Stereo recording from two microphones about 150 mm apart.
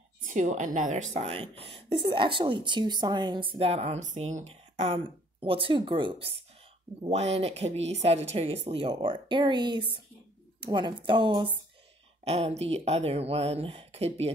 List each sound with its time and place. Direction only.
0.3 s a woman's voice: 55° right (ahead or behind); by 6.2 s 35° right (ahead or behind)
7.0 s a woman's voice: 45° right (ahead or behind)